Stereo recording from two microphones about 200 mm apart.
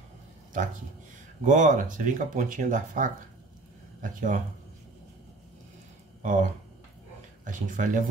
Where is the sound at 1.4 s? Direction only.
40° right (ahead or behind).